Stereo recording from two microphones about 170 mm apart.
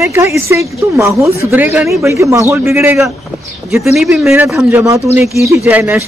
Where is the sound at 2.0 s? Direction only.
15° right (ahead or behind).